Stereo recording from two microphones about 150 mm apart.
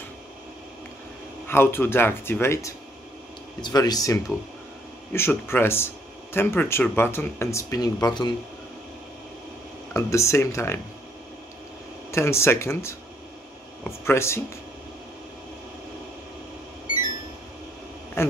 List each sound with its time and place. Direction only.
1.5 s speech: 15° left (ahead or behind)
9.9 s speech: 20° left (ahead or behind)
12.1 s speech: 15° left (ahead or behind)
18.2 s dog: 15° left (ahead or behind)